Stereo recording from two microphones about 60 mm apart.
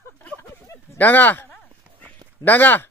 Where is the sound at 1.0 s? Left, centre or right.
Left.